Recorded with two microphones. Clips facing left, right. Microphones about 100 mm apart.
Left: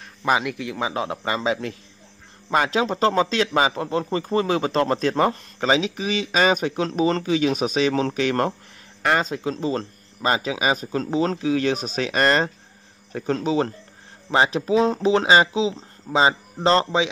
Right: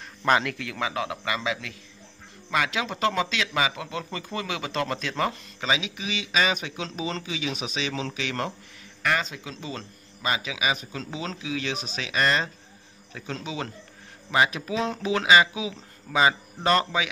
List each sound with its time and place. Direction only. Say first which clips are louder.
0.2 s speech: left 1 dB; 10° left (ahead or behind)